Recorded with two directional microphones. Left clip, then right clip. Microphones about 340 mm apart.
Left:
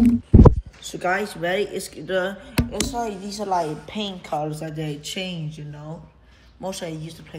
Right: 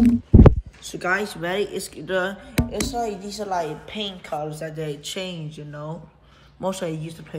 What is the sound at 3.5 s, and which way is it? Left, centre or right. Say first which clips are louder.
Speech: left 3 dB; centre.